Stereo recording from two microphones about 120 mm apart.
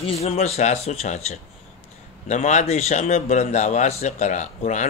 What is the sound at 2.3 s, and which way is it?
A man's voice, 80° left.